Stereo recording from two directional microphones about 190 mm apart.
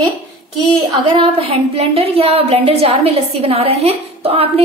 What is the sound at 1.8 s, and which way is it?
A woman's voice, 30° right (ahead or behind).